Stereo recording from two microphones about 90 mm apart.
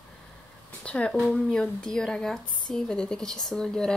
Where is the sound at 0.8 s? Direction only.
10° left (ahead or behind).